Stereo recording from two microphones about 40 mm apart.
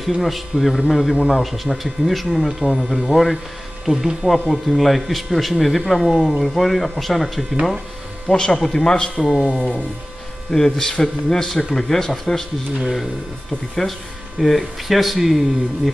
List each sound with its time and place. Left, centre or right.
0.0 s speech: centre
2.6 s speech: centre
3.1 s speech: centre
8.3 s speech: centre
10.5 s speech: centre
13.8 s speech: left
14.4 s speech: centre